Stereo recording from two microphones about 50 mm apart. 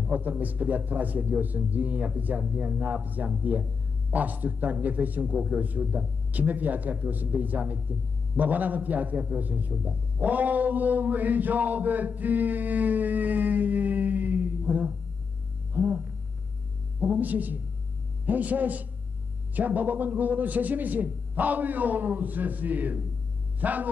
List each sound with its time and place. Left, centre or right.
0.0 s a man's voice: right
15.7 s a sound: right
17.0 s a man's voice: right